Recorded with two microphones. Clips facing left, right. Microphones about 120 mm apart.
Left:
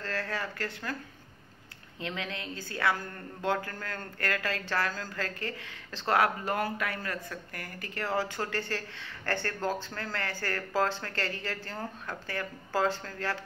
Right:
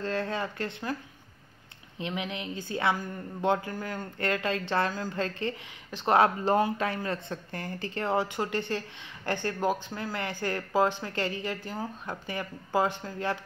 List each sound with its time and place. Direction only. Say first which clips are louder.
0.0 s speech: right 4 dB; 20° right (ahead or behind)
2.0 s speech: right 3 dB; 20° right (ahead or behind)